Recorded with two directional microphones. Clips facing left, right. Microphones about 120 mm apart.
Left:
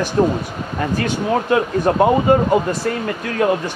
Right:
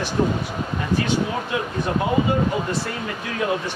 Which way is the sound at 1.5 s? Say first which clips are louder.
Left 8 dB; 50° left (ahead or behind).